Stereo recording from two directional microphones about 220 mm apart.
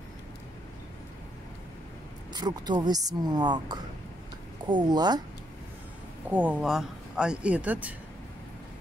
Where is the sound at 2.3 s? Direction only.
20° right (ahead or behind).